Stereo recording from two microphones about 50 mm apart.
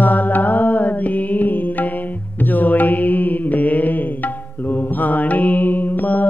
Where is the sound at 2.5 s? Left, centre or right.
Left.